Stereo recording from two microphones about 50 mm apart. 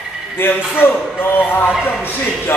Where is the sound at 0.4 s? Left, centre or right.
Left.